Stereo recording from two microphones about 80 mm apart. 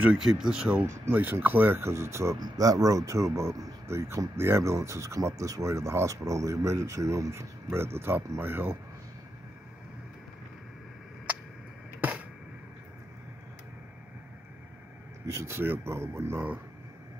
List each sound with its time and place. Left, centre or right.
0.2 s speech: centre
1.1 s speech: right
2.4 s speech: right
15.2 s speech: right